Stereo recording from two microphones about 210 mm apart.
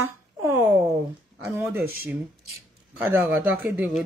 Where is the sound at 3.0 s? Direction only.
10° right (ahead or behind).